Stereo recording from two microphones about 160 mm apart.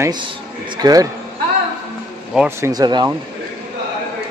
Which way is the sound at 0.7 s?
25° right (ahead or behind).